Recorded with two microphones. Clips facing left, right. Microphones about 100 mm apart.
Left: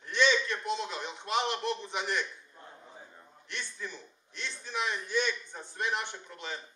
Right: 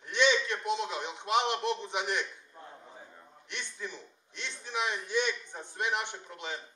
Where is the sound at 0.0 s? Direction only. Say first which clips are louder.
Even; 20° right (ahead or behind).